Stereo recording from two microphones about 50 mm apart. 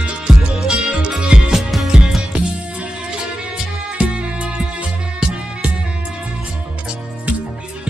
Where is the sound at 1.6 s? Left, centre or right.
Centre.